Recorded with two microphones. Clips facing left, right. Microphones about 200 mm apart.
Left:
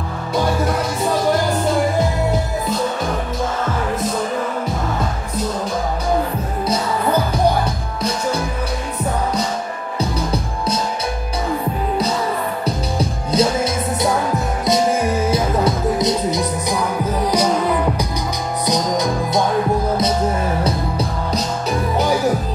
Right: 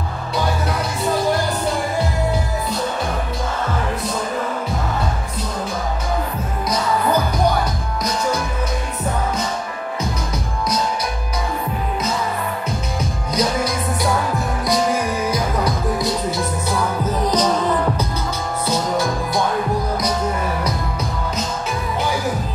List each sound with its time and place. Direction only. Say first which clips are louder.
9.9 s music: left 6 dB; 30° left (ahead or behind)
13.3 s music: left 3 dB; 25° left (ahead or behind)
20.6 s music: left 3 dB; 35° left (ahead or behind)